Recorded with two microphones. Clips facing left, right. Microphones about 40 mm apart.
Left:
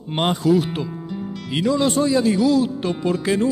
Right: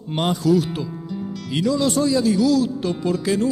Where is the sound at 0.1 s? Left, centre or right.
Left.